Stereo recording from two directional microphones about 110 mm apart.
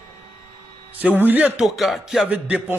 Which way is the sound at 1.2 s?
15° right (ahead or behind).